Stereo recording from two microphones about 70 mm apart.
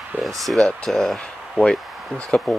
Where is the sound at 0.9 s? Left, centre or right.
Centre.